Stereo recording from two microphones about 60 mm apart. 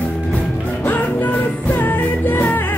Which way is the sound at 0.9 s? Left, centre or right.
Left.